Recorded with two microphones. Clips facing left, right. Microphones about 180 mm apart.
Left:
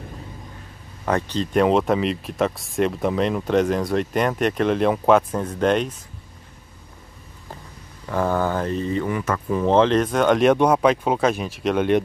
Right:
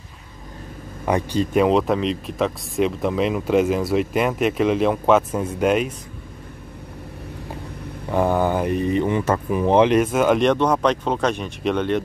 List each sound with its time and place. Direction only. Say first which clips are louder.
1.0 s speech: right 2 dB; 10° right (ahead or behind)
8.1 s speech: right 2 dB; 15° right (ahead or behind)
9.5 s speech: even; 15° right (ahead or behind)
10.4 s speech: left 2 dB; 10° left (ahead or behind)